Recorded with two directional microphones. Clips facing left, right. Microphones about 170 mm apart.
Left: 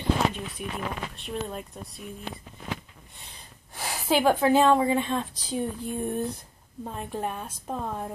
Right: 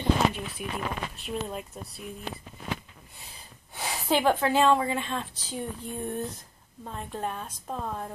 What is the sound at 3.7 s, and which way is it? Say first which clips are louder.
Speech: left 1 dB; centre (ahead or behind).